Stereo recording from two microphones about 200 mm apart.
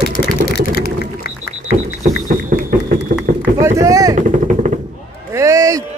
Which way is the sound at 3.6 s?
15° right (ahead or behind).